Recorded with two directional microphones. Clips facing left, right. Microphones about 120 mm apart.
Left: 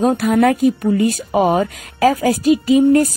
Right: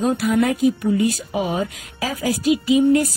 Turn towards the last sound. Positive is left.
turn(degrees=45)  # may be behind; listen again after turning